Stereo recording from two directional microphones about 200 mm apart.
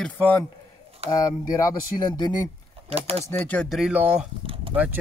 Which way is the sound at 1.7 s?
20° left (ahead or behind).